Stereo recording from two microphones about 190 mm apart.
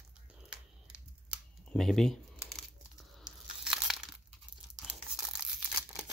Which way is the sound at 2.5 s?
Centre (ahead or behind).